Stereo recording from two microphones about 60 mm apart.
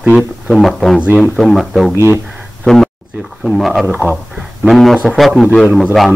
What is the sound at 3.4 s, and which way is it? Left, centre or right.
Speech, centre.